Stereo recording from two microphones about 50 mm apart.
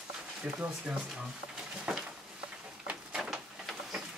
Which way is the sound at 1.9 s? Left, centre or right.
Centre.